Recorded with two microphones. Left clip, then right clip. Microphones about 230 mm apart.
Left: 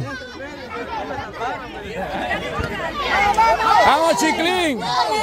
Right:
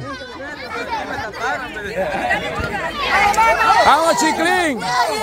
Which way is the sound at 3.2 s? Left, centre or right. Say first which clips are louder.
Right 2 dB; right.